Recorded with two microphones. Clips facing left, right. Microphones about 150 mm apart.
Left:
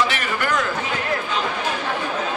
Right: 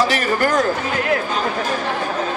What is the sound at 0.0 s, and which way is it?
A man's voice, 40° right (ahead or behind).